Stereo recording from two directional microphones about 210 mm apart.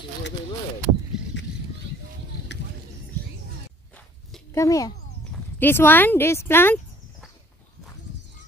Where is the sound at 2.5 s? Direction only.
55° left (ahead or behind).